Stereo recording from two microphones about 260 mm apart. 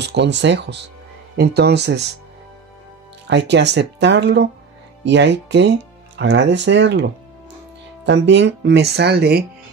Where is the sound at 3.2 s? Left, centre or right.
Right.